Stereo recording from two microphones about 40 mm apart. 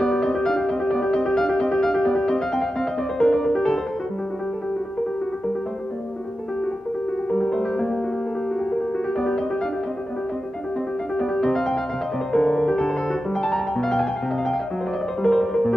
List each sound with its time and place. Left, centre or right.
0.0 s music: centre
7.2 s piano: centre
11.1 s music: centre
12.3 s piano: centre
15.2 s music: centre